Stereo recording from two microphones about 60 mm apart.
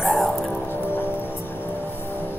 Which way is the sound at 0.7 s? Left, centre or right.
Left.